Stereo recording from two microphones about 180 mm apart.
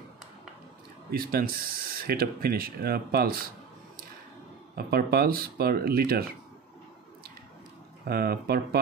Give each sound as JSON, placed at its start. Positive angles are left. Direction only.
{"t": 1.1, "sound": "speech", "side_deg": -55}
{"t": 4.7, "sound": "speech", "side_deg": -60}
{"t": 8.0, "sound": "speech", "side_deg": -60}